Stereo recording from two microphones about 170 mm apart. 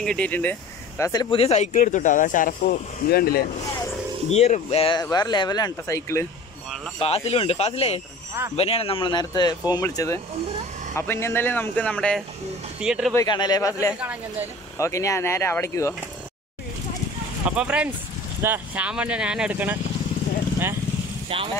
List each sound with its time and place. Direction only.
0.0 s speech: 5° left (ahead or behind)
1.4 s speech: 40° left (ahead or behind); by 3.4 s 65° left (ahead or behind)
4.3 s speech: 40° left (ahead or behind)
5.0 s speech: 20° left (ahead or behind)
7.0 s speech: 35° left (ahead or behind); by 13.1 s 5° right (ahead or behind)
13.1 s speech: 25° left (ahead or behind)
13.9 s speech: 10° right (ahead or behind)
14.8 s speech: 20° left (ahead or behind)
17.5 s speech: 5° right (ahead or behind)